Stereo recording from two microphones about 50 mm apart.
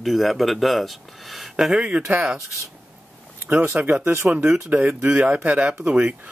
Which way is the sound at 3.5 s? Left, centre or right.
Right.